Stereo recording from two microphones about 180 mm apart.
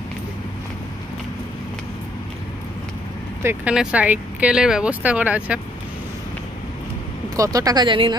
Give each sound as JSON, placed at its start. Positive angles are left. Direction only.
{"t": 3.4, "sound": "speech", "side_deg": -5}
{"t": 7.3, "sound": "speech", "side_deg": -20}